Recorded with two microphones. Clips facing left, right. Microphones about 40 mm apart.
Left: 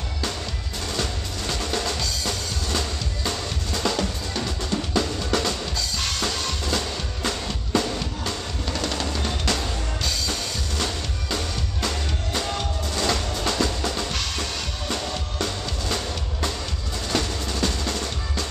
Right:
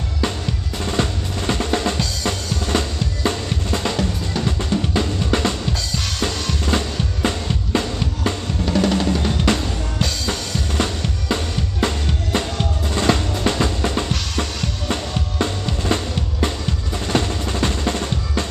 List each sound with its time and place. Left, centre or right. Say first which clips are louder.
0.8 s drum: right 6 dB; right
4.5 s music: right 6 dB; right
8.6 s drum: right 10 dB; centre
9.6 s music: right 4 dB; right
12.8 s drum: right 7 dB; right
17.1 s music: right 5 dB; right